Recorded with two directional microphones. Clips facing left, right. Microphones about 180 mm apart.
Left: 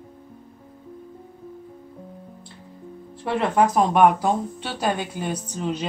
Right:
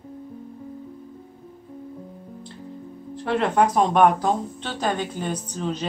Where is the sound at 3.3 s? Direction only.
5° left (ahead or behind).